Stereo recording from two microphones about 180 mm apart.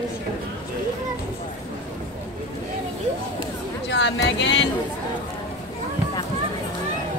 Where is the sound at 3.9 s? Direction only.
75° left (ahead or behind).